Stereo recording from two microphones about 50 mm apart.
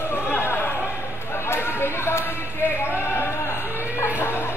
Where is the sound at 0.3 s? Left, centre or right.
Left.